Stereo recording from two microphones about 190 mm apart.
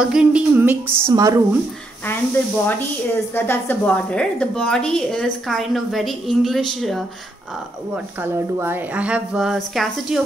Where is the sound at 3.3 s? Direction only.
10° left (ahead or behind).